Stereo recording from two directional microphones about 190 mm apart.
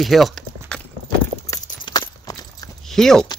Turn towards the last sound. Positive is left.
turn(degrees=0)  # may be behind; listen again after turning